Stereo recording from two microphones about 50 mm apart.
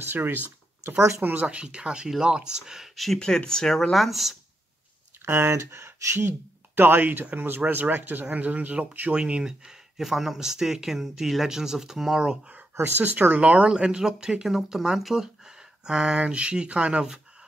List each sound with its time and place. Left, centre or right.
0.0 s speech: right
1.2 s speech: right; by 2.9 s centre
3.2 s speech: centre
5.2 s speech: right
6.7 s speech: right
9.1 s speech: right
12.8 s speech: right
13.7 s speech: centre